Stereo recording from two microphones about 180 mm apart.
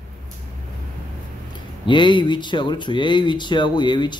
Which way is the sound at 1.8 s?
25° left (ahead or behind).